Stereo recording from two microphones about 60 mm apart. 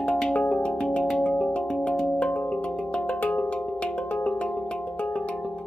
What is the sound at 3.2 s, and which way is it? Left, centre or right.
Music, left.